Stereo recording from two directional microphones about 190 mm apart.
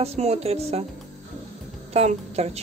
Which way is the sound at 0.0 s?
35° right (ahead or behind).